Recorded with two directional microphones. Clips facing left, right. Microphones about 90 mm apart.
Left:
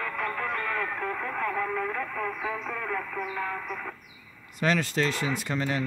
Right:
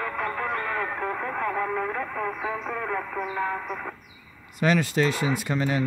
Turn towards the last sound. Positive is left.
turn(degrees=-5)  # may be behind; listen again after turning